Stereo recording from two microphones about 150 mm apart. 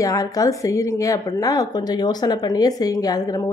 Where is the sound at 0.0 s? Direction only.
20° left (ahead or behind).